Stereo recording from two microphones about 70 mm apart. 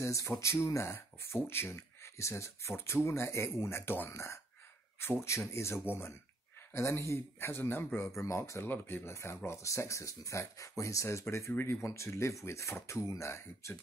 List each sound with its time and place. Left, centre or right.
0.0 s speech: left
5.2 s speech: left
8.6 s speech: left